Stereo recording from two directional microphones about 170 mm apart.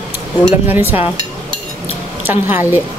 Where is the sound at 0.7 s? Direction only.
10° right (ahead or behind).